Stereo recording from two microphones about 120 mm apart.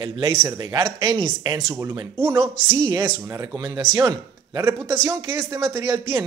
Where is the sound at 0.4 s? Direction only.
30° right (ahead or behind).